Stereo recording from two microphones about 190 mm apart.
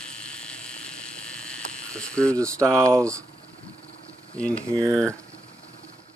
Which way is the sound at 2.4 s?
15° right (ahead or behind).